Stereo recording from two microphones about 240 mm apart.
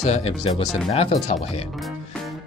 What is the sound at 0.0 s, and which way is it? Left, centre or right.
Speech, left.